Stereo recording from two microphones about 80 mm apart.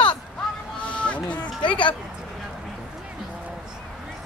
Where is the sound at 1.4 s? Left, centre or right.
Left.